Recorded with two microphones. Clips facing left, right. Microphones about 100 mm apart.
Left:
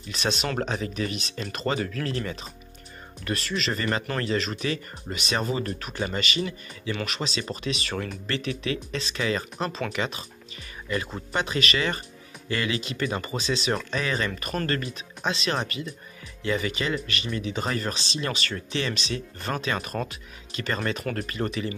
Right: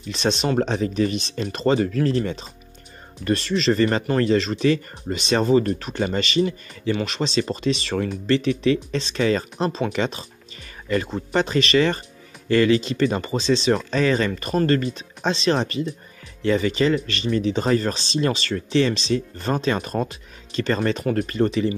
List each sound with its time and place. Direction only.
0.1 s speech: 30° right (ahead or behind)
11.3 s speech: 35° right (ahead or behind)